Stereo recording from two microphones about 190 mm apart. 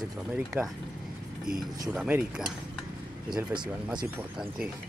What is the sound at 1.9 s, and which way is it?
Speech, 5° right (ahead or behind).